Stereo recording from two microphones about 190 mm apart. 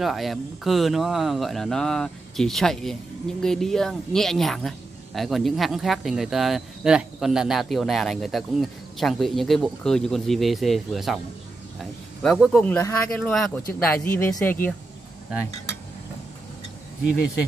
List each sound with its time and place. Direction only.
0.0 s speech: centre (ahead or behind)
11.8 s a sound: centre (ahead or behind)
12.5 s speech: 15° left (ahead or behind)
13.2 s speech: centre (ahead or behind)